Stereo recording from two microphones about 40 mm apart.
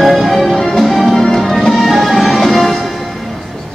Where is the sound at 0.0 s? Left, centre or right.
Centre.